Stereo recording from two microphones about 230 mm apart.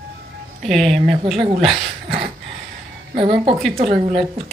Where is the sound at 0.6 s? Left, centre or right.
Centre.